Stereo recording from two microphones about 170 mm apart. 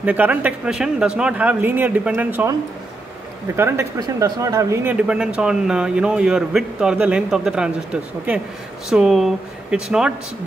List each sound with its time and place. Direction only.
0.0 s speech: 10° right (ahead or behind)
3.5 s speech: 15° right (ahead or behind)
4.9 s a man's voice: 5° right (ahead or behind)